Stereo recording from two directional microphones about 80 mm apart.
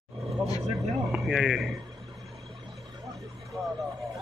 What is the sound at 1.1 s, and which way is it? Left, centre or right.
Speech, centre.